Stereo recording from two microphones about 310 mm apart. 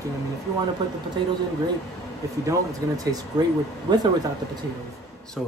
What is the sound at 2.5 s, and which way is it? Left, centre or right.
Speech, centre.